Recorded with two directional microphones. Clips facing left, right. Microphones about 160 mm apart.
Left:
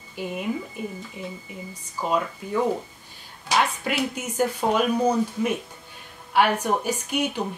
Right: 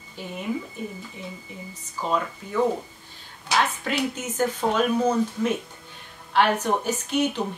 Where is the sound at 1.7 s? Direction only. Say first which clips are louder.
Left 1 dB; 10° left (ahead or behind).